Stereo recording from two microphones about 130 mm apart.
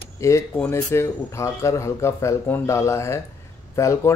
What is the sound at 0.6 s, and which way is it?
Speech, 20° left (ahead or behind).